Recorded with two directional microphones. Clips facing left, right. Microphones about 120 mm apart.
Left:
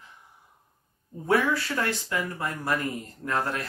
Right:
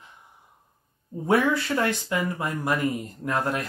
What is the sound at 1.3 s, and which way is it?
Speech, 20° right (ahead or behind).